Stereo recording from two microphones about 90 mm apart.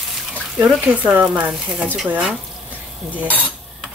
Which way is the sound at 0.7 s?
15° right (ahead or behind).